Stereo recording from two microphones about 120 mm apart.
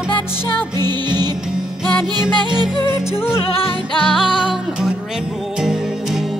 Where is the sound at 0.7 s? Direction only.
35° right (ahead or behind).